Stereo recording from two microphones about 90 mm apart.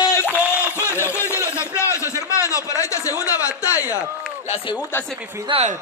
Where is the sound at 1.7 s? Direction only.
30° left (ahead or behind).